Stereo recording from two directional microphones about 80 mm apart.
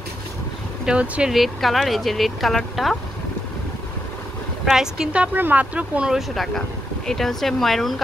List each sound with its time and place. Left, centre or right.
0.8 s speech: centre
1.3 s speech: centre
4.6 s speech: centre
6.1 s speech: centre